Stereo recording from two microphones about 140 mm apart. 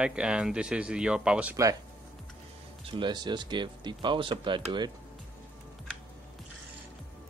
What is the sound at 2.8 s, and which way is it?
Speech, 35° right (ahead or behind).